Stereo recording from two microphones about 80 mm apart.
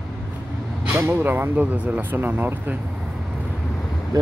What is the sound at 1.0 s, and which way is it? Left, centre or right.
Speech, right.